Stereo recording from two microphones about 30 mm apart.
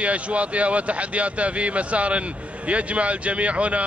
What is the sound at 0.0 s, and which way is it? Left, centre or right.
Speech, right.